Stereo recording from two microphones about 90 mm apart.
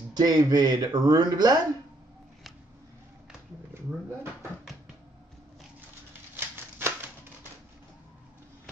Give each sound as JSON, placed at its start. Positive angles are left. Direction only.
{"t": 0.1, "sound": "speech", "side_deg": -45}
{"t": 6.3, "sound": "scissors", "side_deg": -25}